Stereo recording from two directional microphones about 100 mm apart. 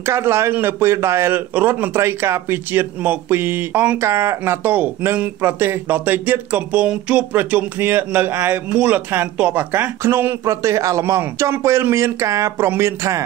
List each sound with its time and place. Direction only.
0.0 s speech: 25° right (ahead or behind)